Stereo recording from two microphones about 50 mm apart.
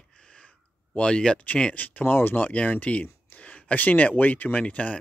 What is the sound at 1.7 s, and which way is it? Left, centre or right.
Speech, left.